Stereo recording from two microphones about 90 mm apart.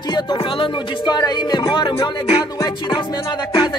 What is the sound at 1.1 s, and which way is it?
Music, 50° left (ahead or behind).